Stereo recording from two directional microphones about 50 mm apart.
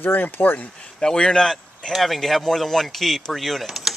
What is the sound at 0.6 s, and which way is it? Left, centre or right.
Speech, centre.